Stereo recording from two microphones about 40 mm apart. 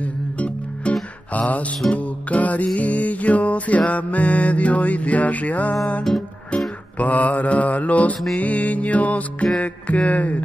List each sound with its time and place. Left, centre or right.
0.0 s music: left
1.3 s mantra: left
2.0 s music: left
6.1 s music: centre
7.0 s mantra: left